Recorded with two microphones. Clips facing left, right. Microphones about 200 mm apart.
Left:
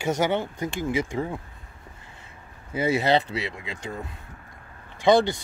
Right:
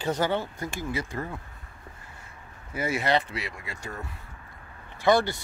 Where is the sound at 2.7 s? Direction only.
25° left (ahead or behind).